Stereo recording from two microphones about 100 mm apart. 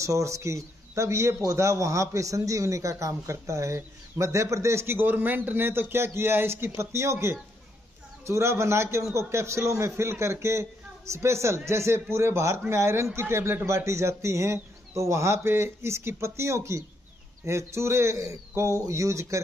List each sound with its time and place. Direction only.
0.0 s a man's voice: 30° right (ahead or behind)